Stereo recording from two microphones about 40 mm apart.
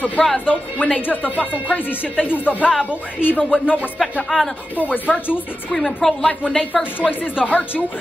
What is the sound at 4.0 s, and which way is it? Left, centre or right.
Speech, centre.